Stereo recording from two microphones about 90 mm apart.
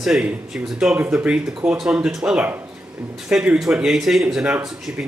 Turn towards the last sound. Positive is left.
turn(degrees=-10)  # may be behind; listen again after turning